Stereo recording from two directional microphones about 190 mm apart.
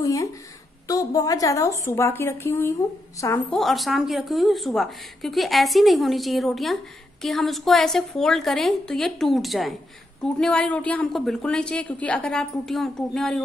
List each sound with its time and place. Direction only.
0.0 s a woman's voice: 15° left (ahead or behind)
3.5 s speech: centre (ahead or behind)